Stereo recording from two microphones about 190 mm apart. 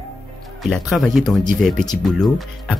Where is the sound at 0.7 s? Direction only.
Centre (ahead or behind).